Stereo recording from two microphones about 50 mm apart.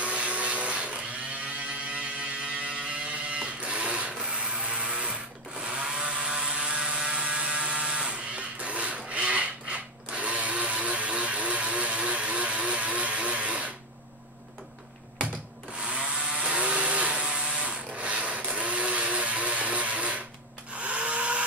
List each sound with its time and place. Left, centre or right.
0.0 s vehicle: right
2.6 s vehicle: right
4.2 s ratchet: centre
5.6 s mechanisms: centre
15.8 s chainsaw: right
20.7 s a sound: right